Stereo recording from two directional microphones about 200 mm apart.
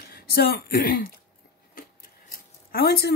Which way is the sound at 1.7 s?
45° left (ahead or behind).